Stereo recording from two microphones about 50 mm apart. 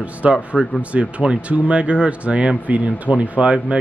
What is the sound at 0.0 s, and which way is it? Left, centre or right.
Speech, right.